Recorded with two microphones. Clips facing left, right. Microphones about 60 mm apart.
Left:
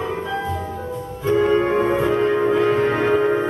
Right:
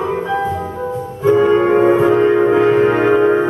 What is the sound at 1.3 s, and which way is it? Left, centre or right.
Music, centre.